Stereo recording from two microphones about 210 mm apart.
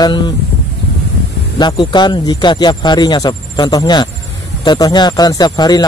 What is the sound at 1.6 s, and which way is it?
Speech, 20° left (ahead or behind).